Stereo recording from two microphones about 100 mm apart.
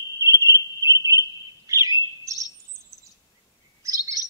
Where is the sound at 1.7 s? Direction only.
30° right (ahead or behind).